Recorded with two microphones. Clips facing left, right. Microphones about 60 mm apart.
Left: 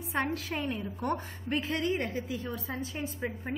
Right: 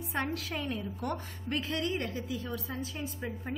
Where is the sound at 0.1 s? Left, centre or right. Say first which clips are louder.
Left 3 dB; left.